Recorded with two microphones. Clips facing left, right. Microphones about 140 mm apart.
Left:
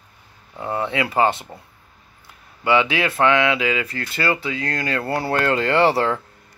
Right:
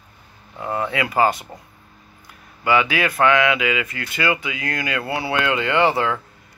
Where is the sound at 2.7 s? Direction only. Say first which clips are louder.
Even; 25° left (ahead or behind).